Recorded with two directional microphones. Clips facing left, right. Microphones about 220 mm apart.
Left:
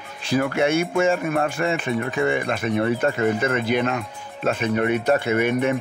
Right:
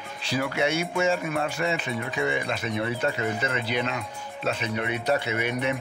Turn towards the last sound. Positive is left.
turn(degrees=50)  # may be behind; listen again after turning